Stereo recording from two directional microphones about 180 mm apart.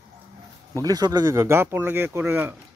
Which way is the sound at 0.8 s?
20° right (ahead or behind).